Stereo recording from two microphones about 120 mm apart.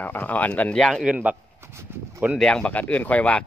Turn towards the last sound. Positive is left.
turn(degrees=10)  # may be behind; listen again after turning